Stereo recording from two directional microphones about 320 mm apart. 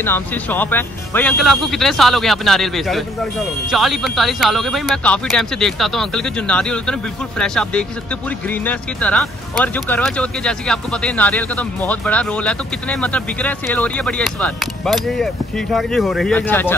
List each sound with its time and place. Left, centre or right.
0.0 s speech: centre